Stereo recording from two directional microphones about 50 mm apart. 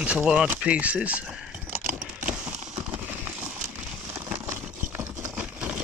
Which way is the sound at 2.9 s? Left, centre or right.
Right.